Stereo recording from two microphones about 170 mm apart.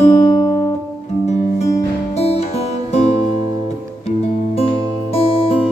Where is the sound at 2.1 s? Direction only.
35° left (ahead or behind).